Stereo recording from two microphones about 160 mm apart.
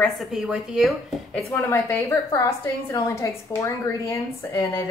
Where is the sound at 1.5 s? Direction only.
15° left (ahead or behind).